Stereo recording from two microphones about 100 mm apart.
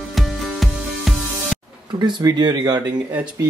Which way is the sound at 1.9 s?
50° right (ahead or behind).